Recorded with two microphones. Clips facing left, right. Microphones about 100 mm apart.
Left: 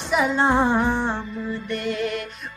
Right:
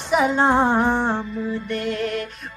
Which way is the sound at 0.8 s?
40° right (ahead or behind).